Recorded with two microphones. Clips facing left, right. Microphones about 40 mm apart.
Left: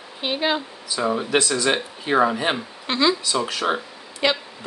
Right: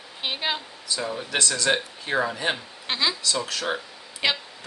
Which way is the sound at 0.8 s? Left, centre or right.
Centre.